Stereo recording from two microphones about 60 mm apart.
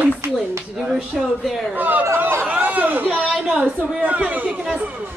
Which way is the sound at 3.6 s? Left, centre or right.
Right.